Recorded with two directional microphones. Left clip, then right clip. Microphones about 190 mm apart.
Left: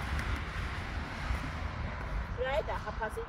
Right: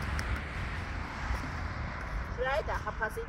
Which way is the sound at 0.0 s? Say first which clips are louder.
Right 1 dB; 55° left (ahead or behind).